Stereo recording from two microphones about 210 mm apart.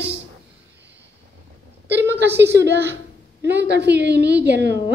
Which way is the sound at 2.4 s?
55° right (ahead or behind).